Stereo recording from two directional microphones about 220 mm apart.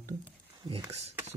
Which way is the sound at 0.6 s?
20° right (ahead or behind).